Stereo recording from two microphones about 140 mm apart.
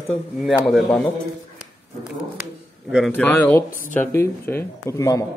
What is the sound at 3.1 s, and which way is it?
Speech, 15° left (ahead or behind).